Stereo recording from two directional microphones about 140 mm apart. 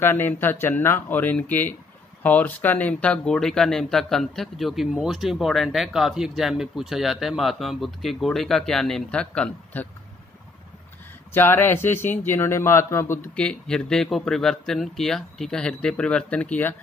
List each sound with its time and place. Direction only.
0.0 s a man's voice: 15° left (ahead or behind)
11.3 s a man's voice: 15° left (ahead or behind)
13.4 s speech: 5° left (ahead or behind)